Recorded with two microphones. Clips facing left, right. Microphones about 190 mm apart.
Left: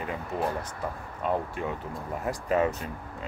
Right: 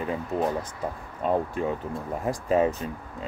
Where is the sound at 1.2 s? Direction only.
35° right (ahead or behind).